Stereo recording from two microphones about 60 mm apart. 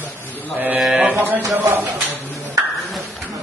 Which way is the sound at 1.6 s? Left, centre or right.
Right.